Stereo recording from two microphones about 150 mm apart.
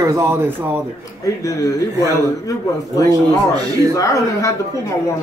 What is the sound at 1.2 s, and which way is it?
Speech, 20° left (ahead or behind).